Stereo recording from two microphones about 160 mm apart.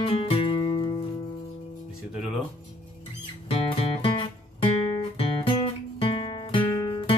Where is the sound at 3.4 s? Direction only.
35° left (ahead or behind).